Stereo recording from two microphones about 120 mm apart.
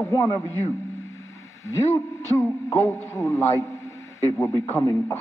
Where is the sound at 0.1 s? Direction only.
25° left (ahead or behind).